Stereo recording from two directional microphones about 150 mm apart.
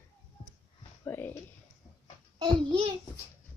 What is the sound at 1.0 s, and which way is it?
Speech, 15° left (ahead or behind).